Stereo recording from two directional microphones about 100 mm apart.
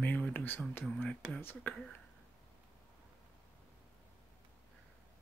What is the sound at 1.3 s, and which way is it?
Speech, 20° left (ahead or behind).